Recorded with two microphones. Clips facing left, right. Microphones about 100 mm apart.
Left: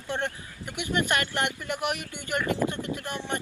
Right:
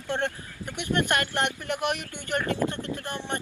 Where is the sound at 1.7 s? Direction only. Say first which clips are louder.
Right 2 dB; 15° left (ahead or behind).